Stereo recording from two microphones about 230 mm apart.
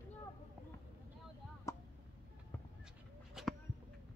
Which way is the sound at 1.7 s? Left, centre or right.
Centre.